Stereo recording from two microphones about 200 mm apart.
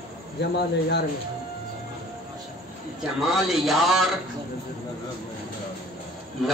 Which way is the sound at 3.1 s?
Centre (ahead or behind).